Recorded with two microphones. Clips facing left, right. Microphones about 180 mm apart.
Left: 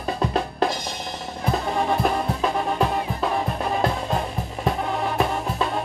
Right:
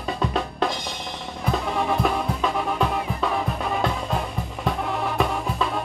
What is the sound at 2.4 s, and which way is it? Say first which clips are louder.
Music: left 1 dB; 30° left (ahead or behind).